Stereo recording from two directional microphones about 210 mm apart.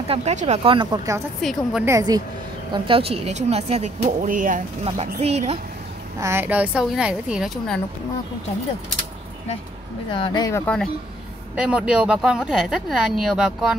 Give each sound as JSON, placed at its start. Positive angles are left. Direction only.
{"t": 0.1, "sound": "speech", "side_deg": -35}
{"t": 1.4, "sound": "speech", "side_deg": 0}
{"t": 1.9, "sound": "speech", "side_deg": -15}
{"t": 6.1, "sound": "speech", "side_deg": -10}
{"t": 10.1, "sound": "speech", "side_deg": 20}
{"t": 10.6, "sound": "speech", "side_deg": 5}